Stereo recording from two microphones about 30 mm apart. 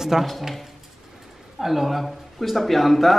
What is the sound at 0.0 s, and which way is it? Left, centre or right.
Speech, centre.